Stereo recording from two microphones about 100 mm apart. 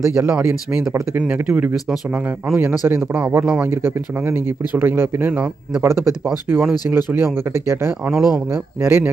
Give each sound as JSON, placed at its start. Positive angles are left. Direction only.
{"t": 0.3, "sound": "speech", "side_deg": -15}
{"t": 3.8, "sound": "speech", "side_deg": -20}
{"t": 6.9, "sound": "speech", "side_deg": -25}
{"t": 8.1, "sound": "speech", "side_deg": -5}
{"t": 8.8, "sound": "speech", "side_deg": -20}